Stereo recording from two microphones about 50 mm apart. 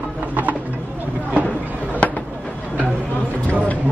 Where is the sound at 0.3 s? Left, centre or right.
Right.